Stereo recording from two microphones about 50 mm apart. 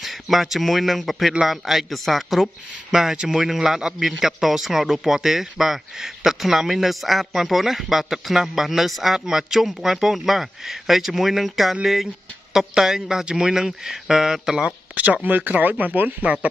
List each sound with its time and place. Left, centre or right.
0.0 s a man's voice: centre
14.9 s a sound: right
15.2 s speech: right